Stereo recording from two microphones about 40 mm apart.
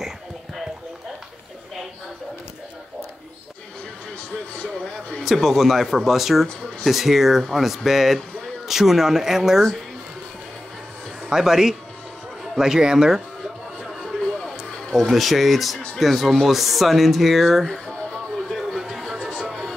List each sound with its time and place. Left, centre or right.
5.2 s speech: centre
11.2 s speech: centre
13.8 s music: centre
16.0 s speech: centre
18.5 s a sound: centre